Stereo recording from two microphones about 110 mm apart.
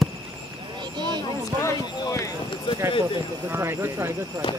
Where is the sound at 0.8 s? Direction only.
40° right (ahead or behind).